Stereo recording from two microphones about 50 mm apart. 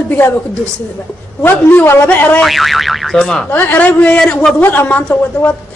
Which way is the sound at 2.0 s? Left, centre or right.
Left.